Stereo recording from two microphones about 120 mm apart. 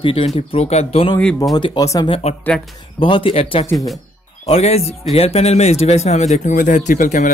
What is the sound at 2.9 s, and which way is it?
A man's voice, 50° left (ahead or behind).